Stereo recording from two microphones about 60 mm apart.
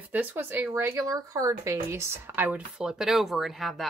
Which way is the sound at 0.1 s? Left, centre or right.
Right.